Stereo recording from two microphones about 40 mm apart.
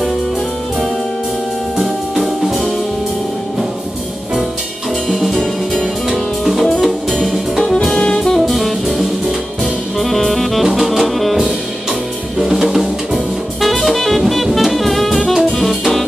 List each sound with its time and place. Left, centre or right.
1.8 s music: centre
5.0 s music: centre
5.4 s music: centre
6.6 s music: centre
7.9 s saxophone: left
8.4 s music: centre
12.4 s jazz: centre